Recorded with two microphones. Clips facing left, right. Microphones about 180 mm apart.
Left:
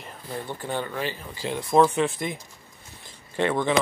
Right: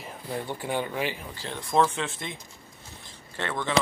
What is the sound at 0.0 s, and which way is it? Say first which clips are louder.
Speech: right 1 dB; 10° right (ahead or behind).